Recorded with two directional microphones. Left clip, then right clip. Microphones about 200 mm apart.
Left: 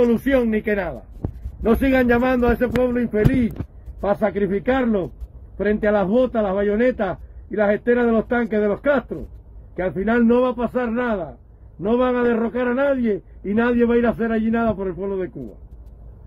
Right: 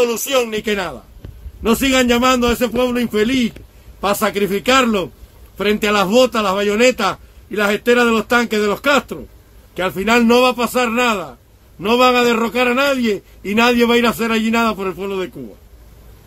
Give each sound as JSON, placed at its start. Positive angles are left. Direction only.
{"t": 0.0, "sound": "a man's voice", "side_deg": -15}